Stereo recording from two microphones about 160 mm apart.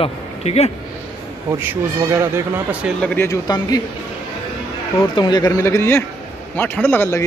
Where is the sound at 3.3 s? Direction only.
25° left (ahead or behind).